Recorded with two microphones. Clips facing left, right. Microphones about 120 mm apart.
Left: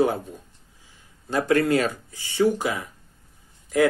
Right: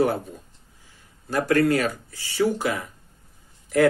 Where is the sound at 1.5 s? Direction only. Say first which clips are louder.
Even; 20° left (ahead or behind).